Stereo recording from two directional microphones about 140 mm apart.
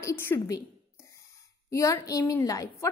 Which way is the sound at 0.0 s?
15° left (ahead or behind).